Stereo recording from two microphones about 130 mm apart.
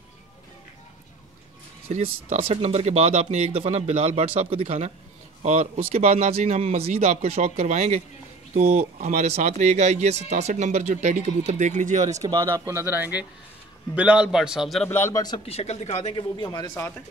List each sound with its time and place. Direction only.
1.9 s speech: 55° right (ahead or behind)
12.2 s a man's voice: 25° right (ahead or behind); by 14.9 s centre (ahead or behind)
14.9 s a man's voice: 20° left (ahead or behind)
15.4 s speech: 55° left (ahead or behind)
16.2 s speech: 35° left (ahead or behind)